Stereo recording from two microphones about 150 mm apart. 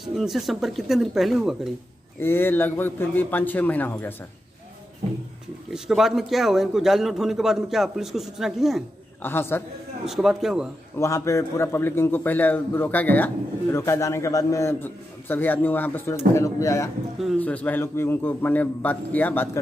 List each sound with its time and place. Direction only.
0.0 s a man's voice: centre (ahead or behind)
2.1 s a man's voice: 15° left (ahead or behind)
5.7 s a man's voice: centre (ahead or behind)
9.2 s a man's voice: 15° left (ahead or behind)
10.0 s a man's voice: centre (ahead or behind)
11.0 s a man's voice: 20° left (ahead or behind)